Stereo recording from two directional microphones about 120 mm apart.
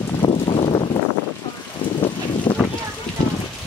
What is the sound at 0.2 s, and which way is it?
Vehicle, 45° left (ahead or behind).